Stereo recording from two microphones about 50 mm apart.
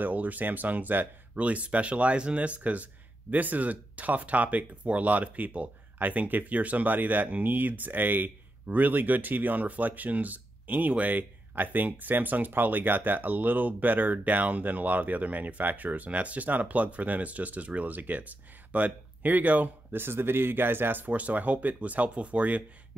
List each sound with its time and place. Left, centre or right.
0.0 s speech: right
21.1 s speech: right